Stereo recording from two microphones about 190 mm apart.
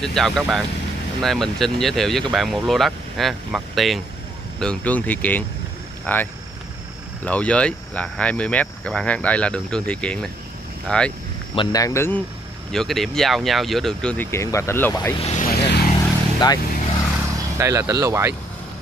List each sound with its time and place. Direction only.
0.0 s speech: 5° left (ahead or behind)
7.2 s speech: 5° left (ahead or behind)
11.5 s speech: 20° left (ahead or behind)
12.7 s speech: centre (ahead or behind)
15.2 s vehicle: 40° left (ahead or behind)
15.5 s vehicle: 60° left (ahead or behind)
16.0 s vehicle: 20° left (ahead or behind)
17.6 s speech: 15° right (ahead or behind)